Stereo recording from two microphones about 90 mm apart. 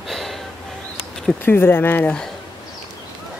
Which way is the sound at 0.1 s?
Centre (ahead or behind).